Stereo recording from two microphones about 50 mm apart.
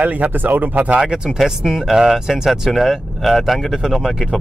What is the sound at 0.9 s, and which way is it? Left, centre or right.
Speech, centre.